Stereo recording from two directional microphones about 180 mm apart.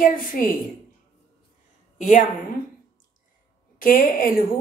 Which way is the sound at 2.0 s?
45° left (ahead or behind).